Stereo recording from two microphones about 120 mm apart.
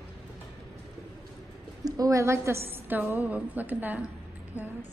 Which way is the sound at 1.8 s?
30° right (ahead or behind).